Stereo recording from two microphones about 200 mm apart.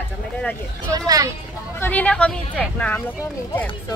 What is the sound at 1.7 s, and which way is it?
Speech, 10° left (ahead or behind).